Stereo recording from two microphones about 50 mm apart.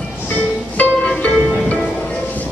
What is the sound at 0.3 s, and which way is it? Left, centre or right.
Music, left.